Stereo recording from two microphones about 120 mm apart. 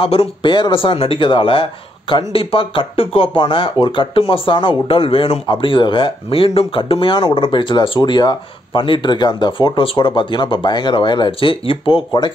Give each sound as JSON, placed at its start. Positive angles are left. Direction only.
{"t": 0.0, "sound": "speech", "side_deg": 50}